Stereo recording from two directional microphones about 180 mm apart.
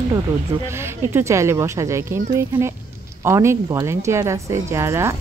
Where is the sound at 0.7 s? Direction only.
15° right (ahead or behind).